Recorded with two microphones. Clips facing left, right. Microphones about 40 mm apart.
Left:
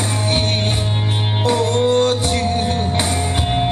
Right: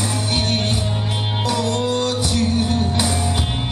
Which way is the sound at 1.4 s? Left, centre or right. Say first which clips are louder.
Left 5 dB; left.